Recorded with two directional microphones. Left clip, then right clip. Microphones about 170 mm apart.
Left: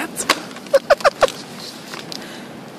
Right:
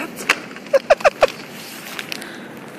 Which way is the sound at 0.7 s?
5° right (ahead or behind).